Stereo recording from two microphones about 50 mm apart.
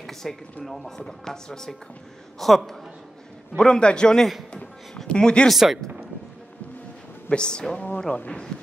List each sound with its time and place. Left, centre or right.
0.0 s a sound: centre
0.7 s a man's voice: centre
3.5 s speech: centre
5.5 s a man's voice: centre
7.2 s speech: centre